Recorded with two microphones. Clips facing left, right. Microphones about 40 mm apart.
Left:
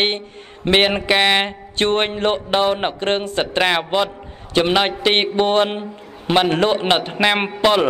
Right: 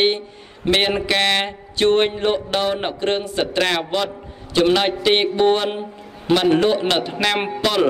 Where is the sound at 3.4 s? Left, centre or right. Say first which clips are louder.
Left 1 dB; left.